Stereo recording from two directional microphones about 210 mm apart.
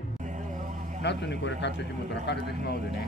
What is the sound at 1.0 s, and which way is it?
Speech, 55° left (ahead or behind).